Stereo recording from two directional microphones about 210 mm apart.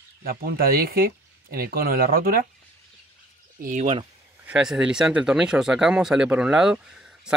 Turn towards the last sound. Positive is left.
turn(degrees=-5)  # may be behind; listen again after turning